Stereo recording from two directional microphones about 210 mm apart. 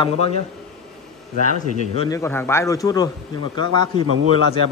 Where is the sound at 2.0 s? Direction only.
15° left (ahead or behind).